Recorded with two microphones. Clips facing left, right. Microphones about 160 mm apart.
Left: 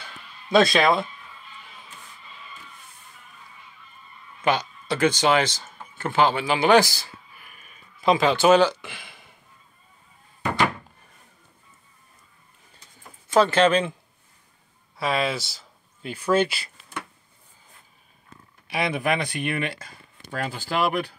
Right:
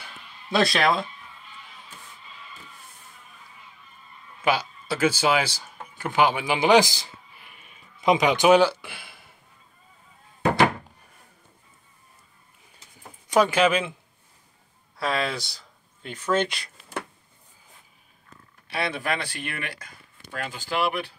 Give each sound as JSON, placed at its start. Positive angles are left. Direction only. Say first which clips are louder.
{"t": 0.5, "sound": "speech", "louder": "left 4 dB", "side_deg": 0}
{"t": 4.4, "sound": "speech", "louder": "left 1 dB", "side_deg": -5}
{"t": 13.3, "sound": "speech", "louder": "left 2 dB", "side_deg": -10}
{"t": 15.0, "sound": "speech", "louder": "left 2 dB", "side_deg": 0}
{"t": 18.7, "sound": "speech", "louder": "left 3 dB", "side_deg": 15}
{"t": 20.2, "sound": "speech", "louder": "left 3 dB", "side_deg": 40}